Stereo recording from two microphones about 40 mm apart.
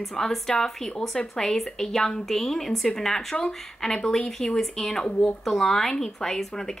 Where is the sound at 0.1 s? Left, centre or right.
Centre.